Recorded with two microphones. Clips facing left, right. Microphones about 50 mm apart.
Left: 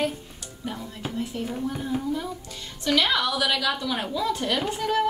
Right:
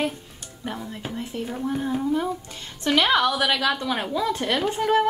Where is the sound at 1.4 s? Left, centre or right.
Centre.